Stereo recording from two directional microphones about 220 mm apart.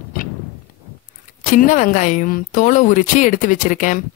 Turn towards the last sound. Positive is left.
turn(degrees=35)  # may be behind; listen again after turning